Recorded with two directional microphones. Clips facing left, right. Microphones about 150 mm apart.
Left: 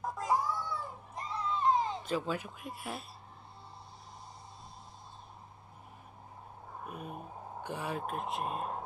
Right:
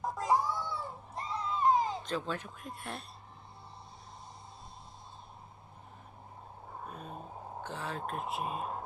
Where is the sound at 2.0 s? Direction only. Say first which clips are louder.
Left 2 dB; 10° left (ahead or behind).